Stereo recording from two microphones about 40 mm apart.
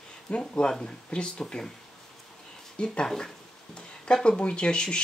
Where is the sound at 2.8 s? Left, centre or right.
Left.